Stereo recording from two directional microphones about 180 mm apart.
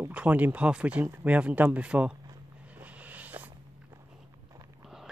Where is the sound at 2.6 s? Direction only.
10° right (ahead or behind).